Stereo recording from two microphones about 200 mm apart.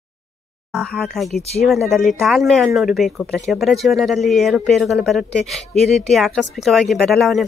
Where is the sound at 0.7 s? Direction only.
Centre (ahead or behind).